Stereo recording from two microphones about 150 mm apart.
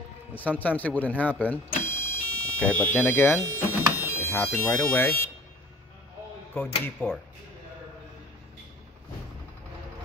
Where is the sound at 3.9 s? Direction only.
20° left (ahead or behind).